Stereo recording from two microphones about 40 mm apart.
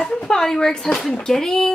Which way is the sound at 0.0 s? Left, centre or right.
Centre.